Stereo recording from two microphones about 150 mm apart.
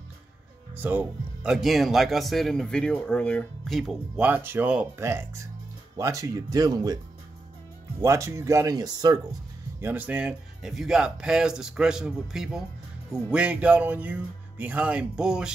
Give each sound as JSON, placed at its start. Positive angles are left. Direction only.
{"t": 0.7, "sound": "speech", "side_deg": -10}
{"t": 4.3, "sound": "speech", "side_deg": -15}
{"t": 8.0, "sound": "speech", "side_deg": -20}
{"t": 9.8, "sound": "speech", "side_deg": -10}